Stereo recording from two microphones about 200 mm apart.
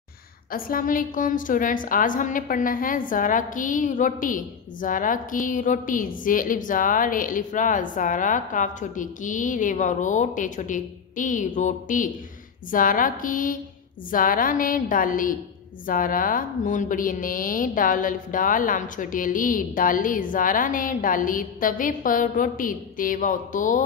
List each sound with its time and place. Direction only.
0.5 s a woman's voice: 45° left (ahead or behind)